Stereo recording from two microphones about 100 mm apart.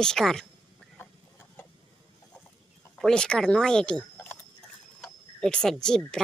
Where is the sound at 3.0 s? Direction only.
5° left (ahead or behind).